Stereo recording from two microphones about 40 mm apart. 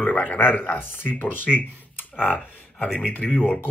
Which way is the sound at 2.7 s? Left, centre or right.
Left.